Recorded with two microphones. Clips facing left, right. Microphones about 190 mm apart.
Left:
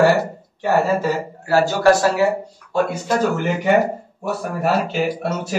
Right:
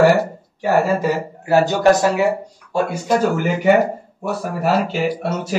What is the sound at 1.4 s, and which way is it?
A man's voice, 20° right (ahead or behind).